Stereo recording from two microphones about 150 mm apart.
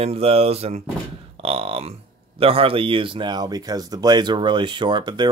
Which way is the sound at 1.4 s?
40° right (ahead or behind).